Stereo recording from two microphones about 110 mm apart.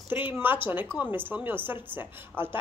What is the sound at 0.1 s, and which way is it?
Speech, 20° right (ahead or behind).